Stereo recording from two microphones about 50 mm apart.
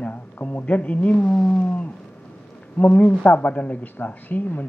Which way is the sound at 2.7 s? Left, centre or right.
Left.